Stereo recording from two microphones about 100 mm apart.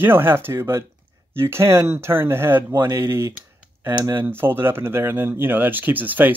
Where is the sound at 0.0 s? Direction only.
20° right (ahead or behind).